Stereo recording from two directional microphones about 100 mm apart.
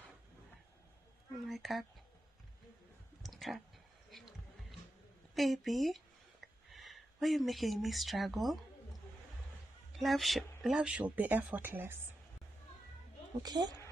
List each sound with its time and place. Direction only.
1.5 s speech: centre (ahead or behind)
3.2 s clicking: centre (ahead or behind)
4.1 s a sound: centre (ahead or behind)
5.3 s speech: centre (ahead or behind)
9.9 s speech: centre (ahead or behind); by 12.0 s 20° right (ahead or behind)
13.4 s a woman's voice: 45° right (ahead or behind)